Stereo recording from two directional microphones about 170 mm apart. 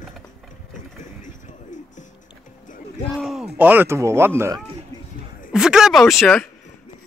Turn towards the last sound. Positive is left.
turn(degrees=5)  # may be behind; listen again after turning